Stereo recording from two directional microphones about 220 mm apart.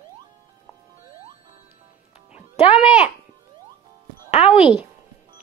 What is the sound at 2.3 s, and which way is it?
Music, 30° left (ahead or behind).